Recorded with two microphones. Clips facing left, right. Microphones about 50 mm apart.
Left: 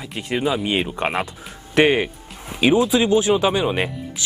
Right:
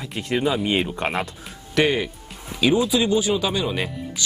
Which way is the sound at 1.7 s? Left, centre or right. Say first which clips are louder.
Left 4 dB; left.